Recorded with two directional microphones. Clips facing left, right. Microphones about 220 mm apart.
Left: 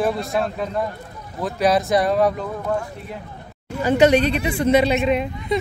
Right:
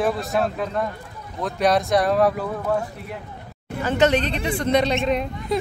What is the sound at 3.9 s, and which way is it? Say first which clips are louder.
Speech: left 4 dB; 10° left (ahead or behind).